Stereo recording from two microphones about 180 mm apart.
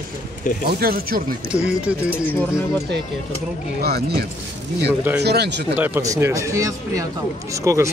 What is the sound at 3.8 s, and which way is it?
Speech, 60° right (ahead or behind).